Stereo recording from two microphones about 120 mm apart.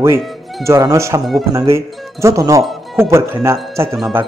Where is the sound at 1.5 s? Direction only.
25° right (ahead or behind).